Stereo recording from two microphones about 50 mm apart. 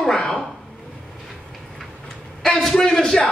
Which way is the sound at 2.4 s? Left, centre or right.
Centre.